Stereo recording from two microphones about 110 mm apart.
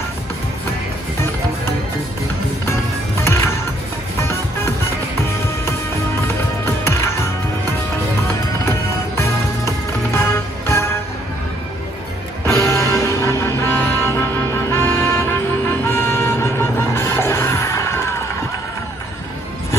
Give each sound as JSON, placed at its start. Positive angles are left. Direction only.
{"t": 3.3, "sound": "music", "side_deg": 25}
{"t": 6.2, "sound": "music", "side_deg": 25}
{"t": 8.6, "sound": "music", "side_deg": 25}
{"t": 12.4, "sound": "music", "side_deg": 25}